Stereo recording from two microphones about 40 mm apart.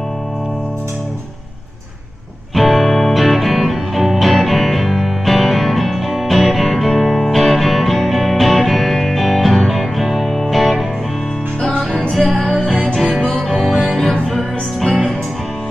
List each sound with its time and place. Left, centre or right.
2.5 s music: centre
12.1 s music: centre